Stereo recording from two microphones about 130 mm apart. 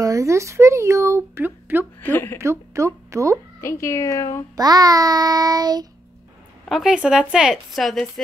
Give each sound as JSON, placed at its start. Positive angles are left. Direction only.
{"t": 0.0, "sound": "speech", "side_deg": -25}
{"t": 2.0, "sound": "a woman's voice", "side_deg": 15}
{"t": 2.3, "sound": "speech", "side_deg": -20}
{"t": 3.6, "sound": "a woman's voice", "side_deg": 20}
{"t": 4.6, "sound": "child singing", "side_deg": -30}
{"t": 6.7, "sound": "speech", "side_deg": -5}